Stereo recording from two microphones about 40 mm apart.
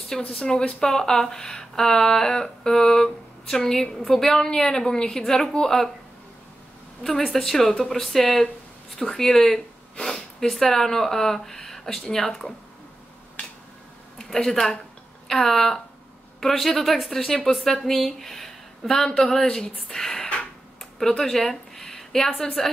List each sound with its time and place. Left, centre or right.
0.4 s speech: centre
5.2 s speech: centre
7.0 s a woman's voice: centre
14.1 s a woman's voice: centre
21.2 s a sound: centre
22.6 s speech: centre